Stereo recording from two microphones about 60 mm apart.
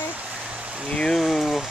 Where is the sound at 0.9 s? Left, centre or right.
Centre.